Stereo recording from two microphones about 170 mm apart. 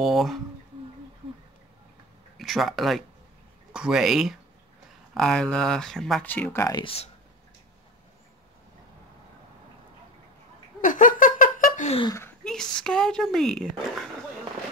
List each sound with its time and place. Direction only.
0.0 s speech: centre (ahead or behind)
2.3 s speech: centre (ahead or behind)
6.8 s speech: 35° left (ahead or behind)
10.8 s a sound: 50° left (ahead or behind)
12.0 s speech: 15° left (ahead or behind)
12.4 s speech: 5° left (ahead or behind)